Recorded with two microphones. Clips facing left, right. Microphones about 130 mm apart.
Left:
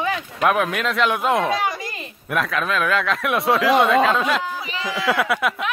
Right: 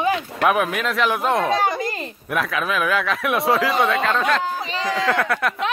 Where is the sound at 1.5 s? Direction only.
30° right (ahead or behind).